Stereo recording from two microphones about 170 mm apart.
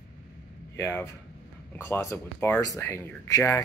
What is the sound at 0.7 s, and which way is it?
Speech, 15° left (ahead or behind).